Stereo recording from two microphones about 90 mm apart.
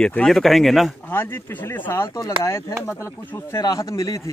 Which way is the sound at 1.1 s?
25° left (ahead or behind).